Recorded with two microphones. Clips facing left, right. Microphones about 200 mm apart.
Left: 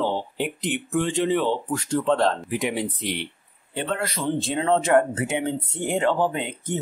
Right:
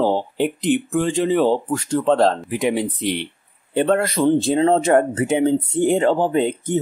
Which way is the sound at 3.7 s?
50° right (ahead or behind).